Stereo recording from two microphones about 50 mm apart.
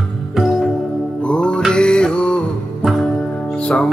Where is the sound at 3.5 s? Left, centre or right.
Centre.